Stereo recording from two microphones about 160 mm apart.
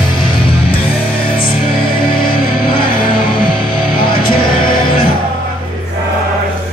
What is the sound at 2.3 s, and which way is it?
Music, 70° left (ahead or behind).